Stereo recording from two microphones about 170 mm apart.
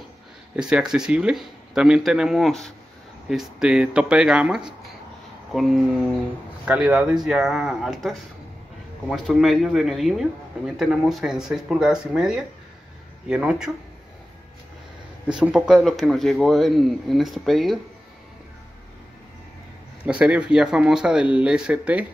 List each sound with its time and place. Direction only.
0.6 s a man's voice: 5° right (ahead or behind)
15.2 s a man's voice: 5° right (ahead or behind)
20.1 s a man's voice: 5° right (ahead or behind)